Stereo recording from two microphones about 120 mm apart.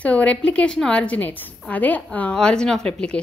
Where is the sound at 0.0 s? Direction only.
10° left (ahead or behind).